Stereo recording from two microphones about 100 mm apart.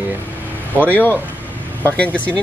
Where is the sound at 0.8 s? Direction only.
20° left (ahead or behind).